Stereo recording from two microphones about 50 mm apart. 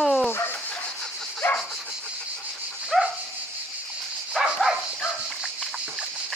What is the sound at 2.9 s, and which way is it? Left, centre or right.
Dog, centre.